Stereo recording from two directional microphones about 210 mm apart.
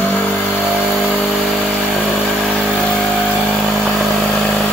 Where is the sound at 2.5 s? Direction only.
Centre (ahead or behind).